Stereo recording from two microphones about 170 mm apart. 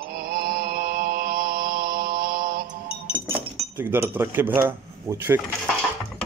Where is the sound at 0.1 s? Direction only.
65° right (ahead or behind).